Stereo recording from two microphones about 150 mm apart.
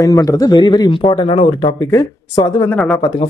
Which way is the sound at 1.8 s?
20° left (ahead or behind).